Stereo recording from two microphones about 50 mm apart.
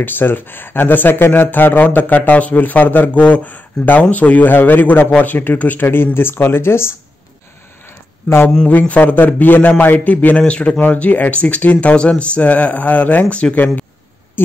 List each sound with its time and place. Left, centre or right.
0.0 s speech: left
8.3 s speech: left